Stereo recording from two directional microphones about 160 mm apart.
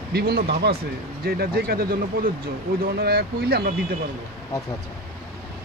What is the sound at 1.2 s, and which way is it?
Speech, 70° right (ahead or behind).